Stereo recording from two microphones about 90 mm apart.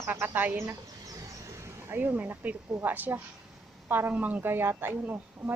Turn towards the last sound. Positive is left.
turn(degrees=-25)  # may be behind; listen again after turning